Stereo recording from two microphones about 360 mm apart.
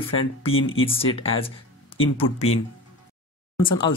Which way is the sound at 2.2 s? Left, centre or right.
Left.